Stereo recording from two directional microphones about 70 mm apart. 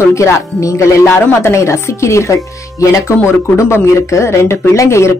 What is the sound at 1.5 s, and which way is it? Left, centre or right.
Speech, left.